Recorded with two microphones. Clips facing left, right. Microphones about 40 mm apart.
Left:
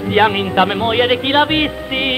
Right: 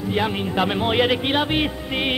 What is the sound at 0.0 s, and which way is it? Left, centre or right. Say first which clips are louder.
Speech: left 9 dB; left.